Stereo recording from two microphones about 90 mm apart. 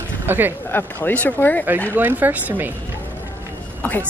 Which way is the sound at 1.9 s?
20° right (ahead or behind).